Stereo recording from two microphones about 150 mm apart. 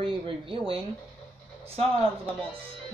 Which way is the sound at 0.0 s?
35° right (ahead or behind).